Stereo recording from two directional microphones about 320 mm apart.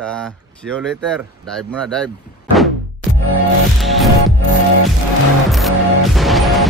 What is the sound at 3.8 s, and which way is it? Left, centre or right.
Music, centre.